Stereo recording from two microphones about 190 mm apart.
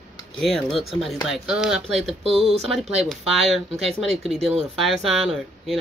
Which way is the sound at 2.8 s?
35° right (ahead or behind).